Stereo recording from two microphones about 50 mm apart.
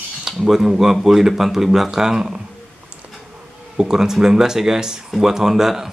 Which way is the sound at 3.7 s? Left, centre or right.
Centre.